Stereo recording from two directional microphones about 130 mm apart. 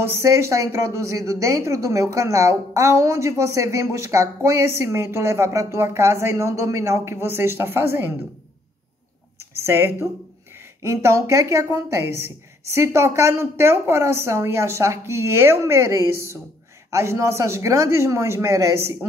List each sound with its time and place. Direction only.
0.0 s a woman's voice: 20° right (ahead or behind)
9.4 s a sound: 20° right (ahead or behind)
10.8 s a woman's voice: 20° right (ahead or behind)